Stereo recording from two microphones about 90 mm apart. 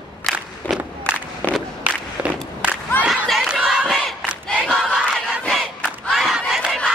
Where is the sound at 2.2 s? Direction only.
15° right (ahead or behind).